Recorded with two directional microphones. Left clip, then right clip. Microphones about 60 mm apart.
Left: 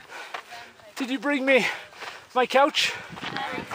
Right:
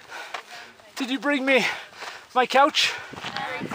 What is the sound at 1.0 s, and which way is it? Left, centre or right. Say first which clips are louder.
Speech: right 2 dB; right.